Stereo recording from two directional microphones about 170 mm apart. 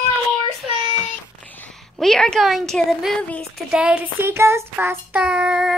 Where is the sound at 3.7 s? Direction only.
5° right (ahead or behind).